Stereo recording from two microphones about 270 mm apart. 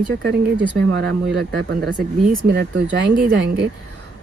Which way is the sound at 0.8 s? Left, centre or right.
Right.